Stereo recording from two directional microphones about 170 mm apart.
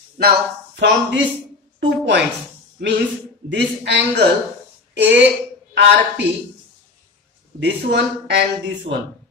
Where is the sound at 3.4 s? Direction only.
90° right.